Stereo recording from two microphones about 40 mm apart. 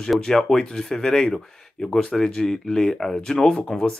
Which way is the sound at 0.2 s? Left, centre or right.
Centre.